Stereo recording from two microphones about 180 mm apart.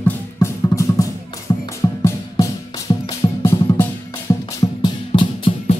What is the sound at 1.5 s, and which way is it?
Music, 25° left (ahead or behind).